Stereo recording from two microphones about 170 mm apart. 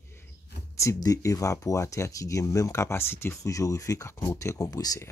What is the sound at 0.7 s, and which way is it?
Speech, 20° left (ahead or behind).